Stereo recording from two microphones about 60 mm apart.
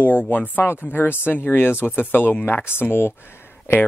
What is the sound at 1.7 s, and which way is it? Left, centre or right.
Speech, right.